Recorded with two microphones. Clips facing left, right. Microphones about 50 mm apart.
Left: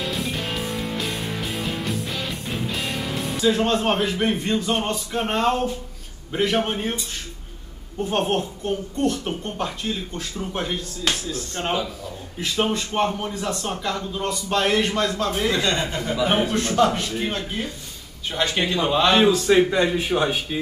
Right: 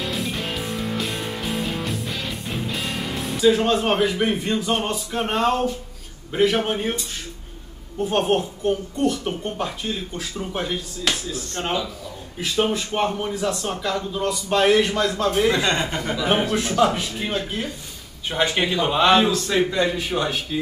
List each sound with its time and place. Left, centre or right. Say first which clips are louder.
0.1 s music: even; centre
2.7 s a man's voice: even; centre
8.0 s a man's voice: right 2 dB; centre
12.6 s a man's voice: even; centre
15.0 s a man's voice: right 2 dB; centre
15.3 s speech: right 2 dB; right
16.3 s a man's voice: right 2 dB; centre
18.3 s a man's voice: right 2 dB; centre
19.2 s a man's voice: left 4 dB; centre
19.7 s a man's voice: left 2 dB; left